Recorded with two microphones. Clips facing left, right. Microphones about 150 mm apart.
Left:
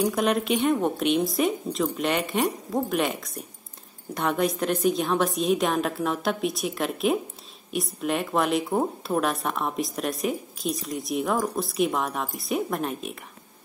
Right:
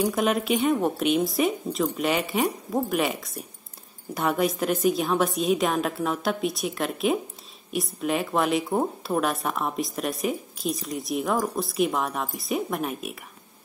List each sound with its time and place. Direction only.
0.0 s speech: centre (ahead or behind)